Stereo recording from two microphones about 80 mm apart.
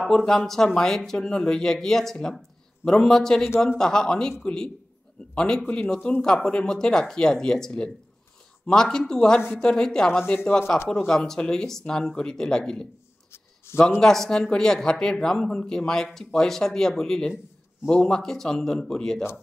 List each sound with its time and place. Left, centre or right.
0.1 s a man's voice: centre